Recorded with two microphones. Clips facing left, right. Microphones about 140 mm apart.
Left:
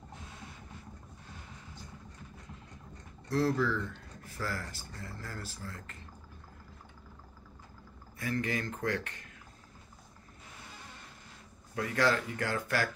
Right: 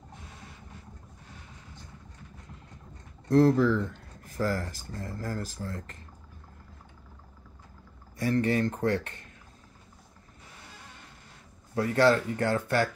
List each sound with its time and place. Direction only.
3.3 s speech: 50° right (ahead or behind)
8.2 s speech: 35° right (ahead or behind)
11.7 s speech: 30° right (ahead or behind)